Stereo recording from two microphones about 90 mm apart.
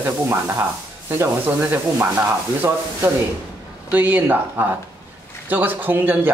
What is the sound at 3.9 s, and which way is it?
Speech, 20° right (ahead or behind).